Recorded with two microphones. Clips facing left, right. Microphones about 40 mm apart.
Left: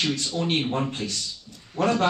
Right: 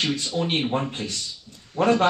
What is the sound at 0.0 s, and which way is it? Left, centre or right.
Speech, centre.